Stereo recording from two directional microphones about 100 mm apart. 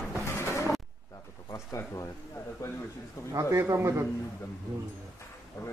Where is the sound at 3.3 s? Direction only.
25° right (ahead or behind).